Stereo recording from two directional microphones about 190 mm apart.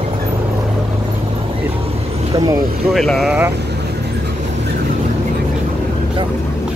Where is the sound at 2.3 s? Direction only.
20° right (ahead or behind).